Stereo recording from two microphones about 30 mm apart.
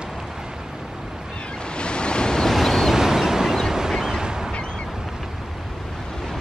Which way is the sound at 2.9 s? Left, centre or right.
Centre.